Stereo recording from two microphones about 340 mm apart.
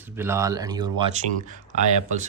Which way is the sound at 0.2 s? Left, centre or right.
Centre.